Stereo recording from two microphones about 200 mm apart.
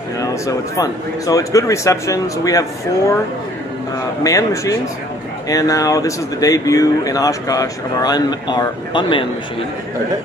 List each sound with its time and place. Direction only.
0.2 s speech: 15° left (ahead or behind)
4.2 s speech: 15° left (ahead or behind)